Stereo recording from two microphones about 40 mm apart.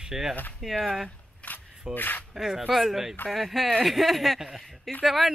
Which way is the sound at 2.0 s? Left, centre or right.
Left.